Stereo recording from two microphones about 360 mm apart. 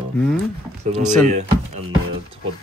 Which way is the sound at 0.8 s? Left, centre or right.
Centre.